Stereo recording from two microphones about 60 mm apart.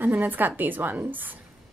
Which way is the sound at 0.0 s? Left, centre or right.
Right.